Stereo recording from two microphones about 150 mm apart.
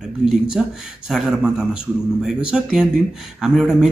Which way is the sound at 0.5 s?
5° right (ahead or behind).